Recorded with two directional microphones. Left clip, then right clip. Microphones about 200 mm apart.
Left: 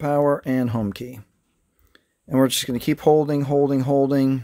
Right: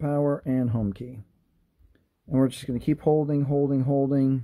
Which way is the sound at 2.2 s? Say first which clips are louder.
Left 6 dB; 20° left (ahead or behind).